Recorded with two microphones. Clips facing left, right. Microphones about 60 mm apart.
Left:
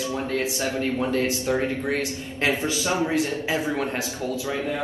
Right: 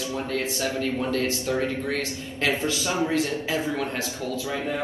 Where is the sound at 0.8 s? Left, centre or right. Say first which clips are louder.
Left 3 dB; left.